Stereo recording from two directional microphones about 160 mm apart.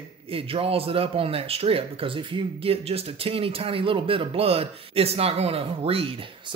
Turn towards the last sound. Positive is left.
turn(degrees=-35)  # may be behind; listen again after turning